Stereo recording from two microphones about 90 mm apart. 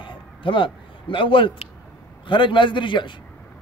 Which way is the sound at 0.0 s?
65° left (ahead or behind).